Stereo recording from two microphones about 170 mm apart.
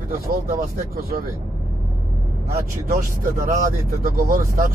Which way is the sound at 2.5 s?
55° right (ahead or behind).